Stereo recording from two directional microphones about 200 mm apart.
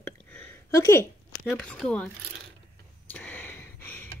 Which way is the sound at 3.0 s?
10° left (ahead or behind).